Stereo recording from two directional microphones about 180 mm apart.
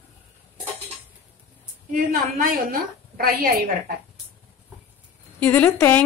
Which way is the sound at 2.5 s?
55° right (ahead or behind).